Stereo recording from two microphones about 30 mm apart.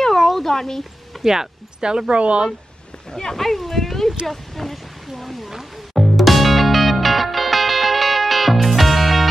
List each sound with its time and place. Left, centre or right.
0.0 s a sound: centre
0.4 s speech: centre
1.2 s speech: centre
1.8 s speech: right
2.1 s speech: right
3.1 s speech: left
3.3 s speech: centre
5.9 s music: centre